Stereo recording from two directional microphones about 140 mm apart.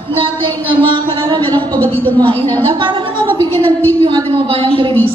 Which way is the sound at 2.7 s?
35° right (ahead or behind).